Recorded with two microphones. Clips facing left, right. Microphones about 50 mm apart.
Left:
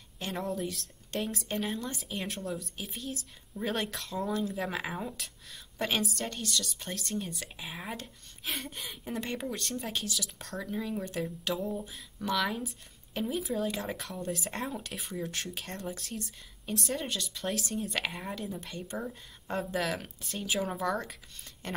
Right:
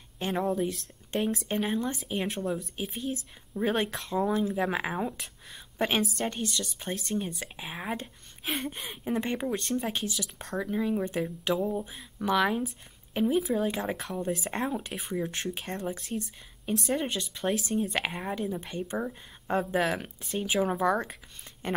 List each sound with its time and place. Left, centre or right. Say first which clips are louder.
0.4 s speech: right 6 dB; centre
1.1 s a woman's voice: right 5 dB; right
4.3 s speech: right 2 dB; centre
4.6 s a woman's voice: right 5 dB; right
8.5 s a woman's voice: right 5 dB; right
13.9 s speech: right 5 dB; centre
14.4 s a woman's voice: right 5 dB; right